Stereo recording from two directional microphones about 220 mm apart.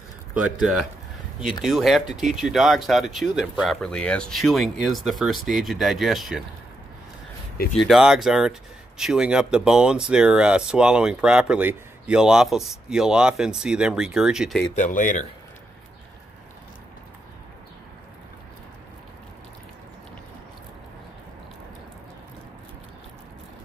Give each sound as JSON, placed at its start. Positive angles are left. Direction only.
{"t": 0.3, "sound": "speech", "side_deg": -5}
{"t": 7.8, "sound": "speech", "side_deg": 0}
{"t": 14.8, "sound": "speech", "side_deg": 35}